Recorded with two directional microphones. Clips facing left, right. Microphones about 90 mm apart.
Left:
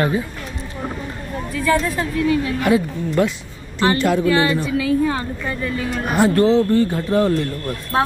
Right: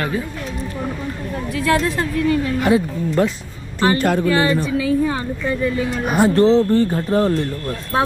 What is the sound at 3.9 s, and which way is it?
Speech, 45° right (ahead or behind).